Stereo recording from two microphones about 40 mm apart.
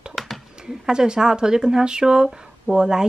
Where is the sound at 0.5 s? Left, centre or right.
Centre.